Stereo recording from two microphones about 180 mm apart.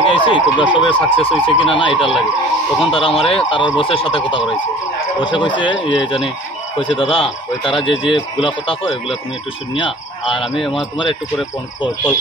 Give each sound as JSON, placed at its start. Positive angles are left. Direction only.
{"t": 0.0, "sound": "speech", "side_deg": 30}
{"t": 10.4, "sound": "speech", "side_deg": 0}